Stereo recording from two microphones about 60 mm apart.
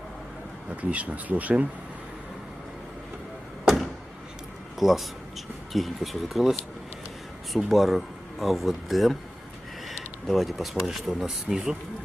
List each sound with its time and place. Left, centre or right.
0.7 s speech: right
3.6 s a sound: centre
4.7 s speech: centre
7.5 s speech: centre